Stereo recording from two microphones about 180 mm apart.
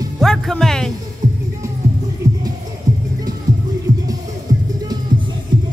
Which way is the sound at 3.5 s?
45° right (ahead or behind).